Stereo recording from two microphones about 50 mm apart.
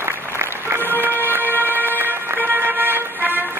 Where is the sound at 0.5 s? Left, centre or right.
Right.